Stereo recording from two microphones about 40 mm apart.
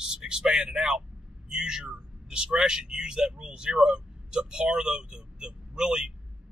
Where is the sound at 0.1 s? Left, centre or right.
Centre.